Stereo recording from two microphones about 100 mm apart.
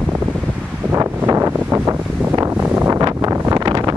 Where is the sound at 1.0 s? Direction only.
25° right (ahead or behind).